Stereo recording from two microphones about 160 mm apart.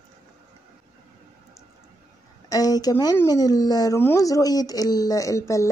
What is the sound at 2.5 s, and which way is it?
Speech, 25° left (ahead or behind).